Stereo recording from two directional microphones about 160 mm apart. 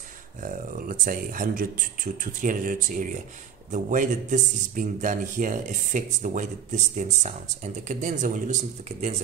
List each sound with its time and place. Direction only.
0.4 s a man's voice: 60° right (ahead or behind)